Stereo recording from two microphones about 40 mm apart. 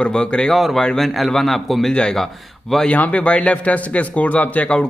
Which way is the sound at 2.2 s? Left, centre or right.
Centre.